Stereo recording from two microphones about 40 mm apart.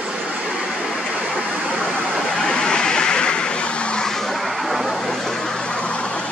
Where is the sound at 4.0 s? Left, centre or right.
Centre.